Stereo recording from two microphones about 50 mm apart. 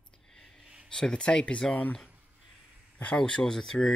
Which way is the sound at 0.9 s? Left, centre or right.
Centre.